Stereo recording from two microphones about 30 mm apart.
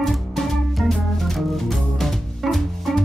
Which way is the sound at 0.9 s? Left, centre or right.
Centre.